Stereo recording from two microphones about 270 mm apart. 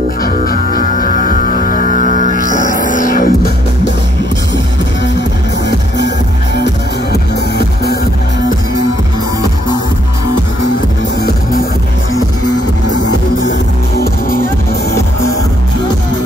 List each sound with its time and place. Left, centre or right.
0.2 s music: left
1.8 s music: right
2.1 s music: left
5.7 s music: left
13.5 s music: left